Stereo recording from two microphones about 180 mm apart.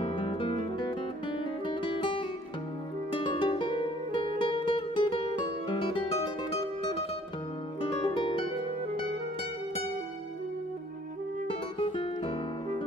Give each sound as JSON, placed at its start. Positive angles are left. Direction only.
{"t": 0.0, "sound": "music", "side_deg": 30}
{"t": 7.8, "sound": "music", "side_deg": 25}
{"t": 11.4, "sound": "music", "side_deg": 30}